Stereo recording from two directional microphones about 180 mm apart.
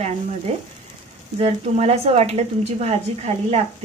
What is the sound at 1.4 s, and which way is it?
A woman's voice, 35° right (ahead or behind).